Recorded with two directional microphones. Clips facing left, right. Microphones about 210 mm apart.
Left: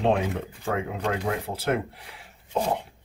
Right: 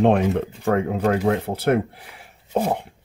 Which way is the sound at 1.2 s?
65° right (ahead or behind).